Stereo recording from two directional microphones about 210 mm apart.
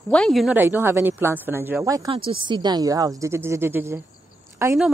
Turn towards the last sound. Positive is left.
turn(degrees=-10)  # may be behind; listen again after turning